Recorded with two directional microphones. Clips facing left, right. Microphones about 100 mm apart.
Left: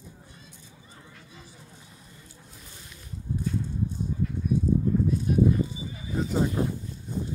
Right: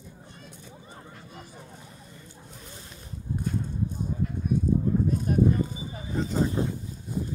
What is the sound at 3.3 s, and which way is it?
Clip-clop, 50° right (ahead or behind).